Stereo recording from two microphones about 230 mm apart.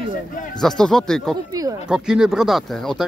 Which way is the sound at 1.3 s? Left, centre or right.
Centre.